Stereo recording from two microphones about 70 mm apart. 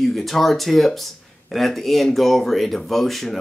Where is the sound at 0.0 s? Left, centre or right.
Centre.